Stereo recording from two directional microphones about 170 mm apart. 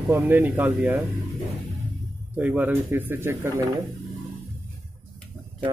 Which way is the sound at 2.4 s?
10° right (ahead or behind).